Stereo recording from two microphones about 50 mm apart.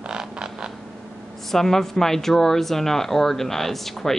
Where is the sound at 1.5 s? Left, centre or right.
Centre.